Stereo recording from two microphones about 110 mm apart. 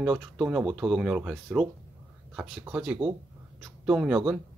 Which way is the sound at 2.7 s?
10° right (ahead or behind).